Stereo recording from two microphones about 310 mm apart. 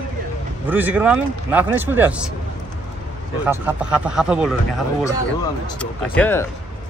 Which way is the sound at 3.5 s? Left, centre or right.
Centre.